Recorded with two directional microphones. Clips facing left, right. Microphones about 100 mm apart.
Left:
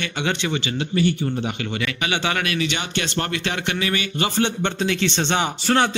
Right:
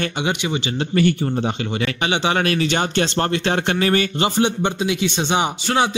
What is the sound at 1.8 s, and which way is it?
Speech, 25° right (ahead or behind).